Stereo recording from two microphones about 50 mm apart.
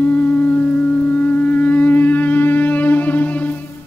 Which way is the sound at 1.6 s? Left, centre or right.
Left.